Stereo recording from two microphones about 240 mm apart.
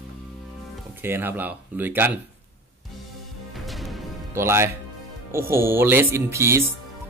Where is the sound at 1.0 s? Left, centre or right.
Centre.